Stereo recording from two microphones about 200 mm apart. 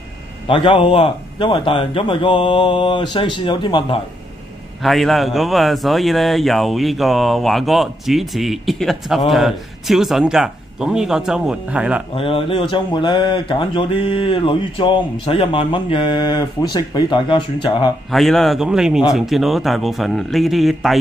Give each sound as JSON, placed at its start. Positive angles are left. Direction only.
{"t": 0.5, "sound": "speech", "side_deg": 25}
{"t": 4.8, "sound": "speech", "side_deg": 0}
{"t": 12.2, "sound": "speech", "side_deg": 30}
{"t": 18.1, "sound": "speech", "side_deg": 0}